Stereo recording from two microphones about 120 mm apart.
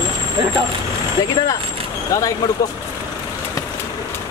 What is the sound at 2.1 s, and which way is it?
Speech, 30° left (ahead or behind).